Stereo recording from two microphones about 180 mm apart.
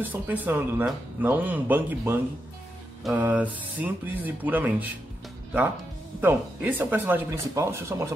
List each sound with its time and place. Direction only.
0.0 s speech: 10° right (ahead or behind)
6.2 s speech: 10° right (ahead or behind)